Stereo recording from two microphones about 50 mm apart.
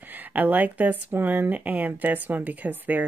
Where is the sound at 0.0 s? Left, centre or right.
Right.